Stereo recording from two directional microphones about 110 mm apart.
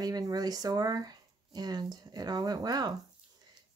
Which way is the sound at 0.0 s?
35° right (ahead or behind).